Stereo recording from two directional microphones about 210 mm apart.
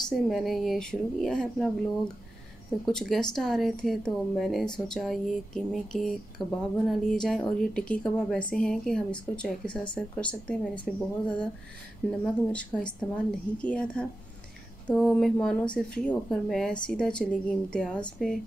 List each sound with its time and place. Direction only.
0.1 s speech: centre (ahead or behind)
2.8 s speech: centre (ahead or behind)
12.5 s speech: 5° left (ahead or behind)